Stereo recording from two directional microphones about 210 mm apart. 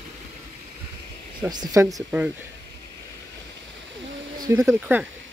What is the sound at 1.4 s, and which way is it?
Speech, 15° right (ahead or behind).